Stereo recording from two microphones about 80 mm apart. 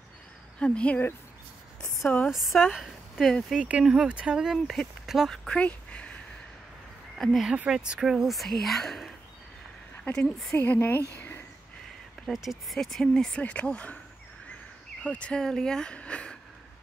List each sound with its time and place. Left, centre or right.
0.6 s speech: centre
2.0 s speech: left
2.3 s speech: centre
2.8 s a sound: centre
3.6 s speech: centre
5.3 s speech: centre
7.2 s speech: centre
7.5 s speech: centre
10.1 s speech: centre
12.3 s speech: centre
15.0 s speech: centre